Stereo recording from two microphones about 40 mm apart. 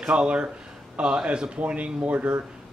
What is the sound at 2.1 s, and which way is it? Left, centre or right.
Speech, right.